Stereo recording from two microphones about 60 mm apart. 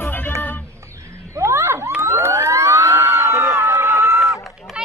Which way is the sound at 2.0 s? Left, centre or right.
Right.